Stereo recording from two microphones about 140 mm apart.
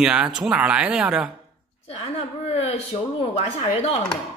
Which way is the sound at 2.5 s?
50° left (ahead or behind).